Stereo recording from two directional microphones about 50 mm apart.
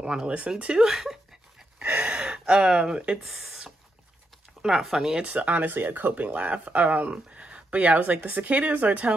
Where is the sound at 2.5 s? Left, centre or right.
Centre.